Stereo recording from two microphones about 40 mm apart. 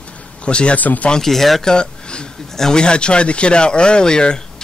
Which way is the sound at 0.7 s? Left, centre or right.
Left.